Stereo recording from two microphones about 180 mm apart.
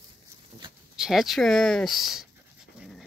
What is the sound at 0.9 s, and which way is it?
Speech, centre (ahead or behind).